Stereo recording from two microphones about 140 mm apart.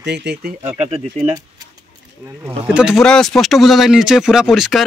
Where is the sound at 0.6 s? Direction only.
50° right (ahead or behind).